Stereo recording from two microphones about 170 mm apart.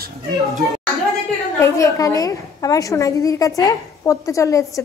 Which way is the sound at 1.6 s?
15° left (ahead or behind).